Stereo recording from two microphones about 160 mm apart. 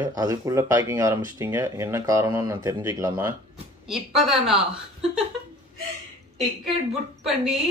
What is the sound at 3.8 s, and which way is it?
A woman's voice, centre (ahead or behind).